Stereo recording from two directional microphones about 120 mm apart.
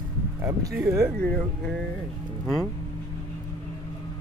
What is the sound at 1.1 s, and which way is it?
Speech, 5° left (ahead or behind).